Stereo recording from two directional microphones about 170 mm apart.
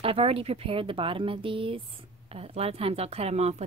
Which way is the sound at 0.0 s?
35° right (ahead or behind).